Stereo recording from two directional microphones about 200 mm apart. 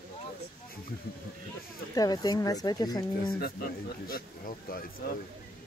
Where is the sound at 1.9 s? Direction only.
20° left (ahead or behind).